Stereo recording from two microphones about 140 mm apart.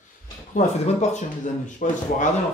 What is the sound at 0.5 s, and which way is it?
Speech, 55° left (ahead or behind).